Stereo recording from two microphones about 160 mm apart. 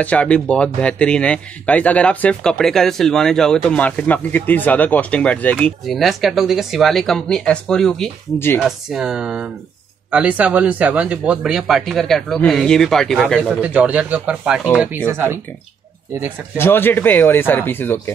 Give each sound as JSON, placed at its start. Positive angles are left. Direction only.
{"t": 0.0, "sound": "speech", "side_deg": 10}
{"t": 13.6, "sound": "speech", "side_deg": -10}
{"t": 15.0, "sound": "speech", "side_deg": -15}
{"t": 16.5, "sound": "speech", "side_deg": 15}